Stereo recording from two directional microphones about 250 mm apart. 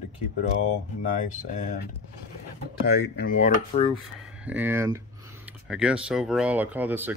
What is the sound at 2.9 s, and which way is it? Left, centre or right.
Speech, left.